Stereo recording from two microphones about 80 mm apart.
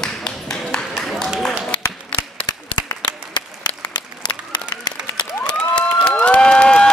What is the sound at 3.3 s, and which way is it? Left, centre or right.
Applause, left.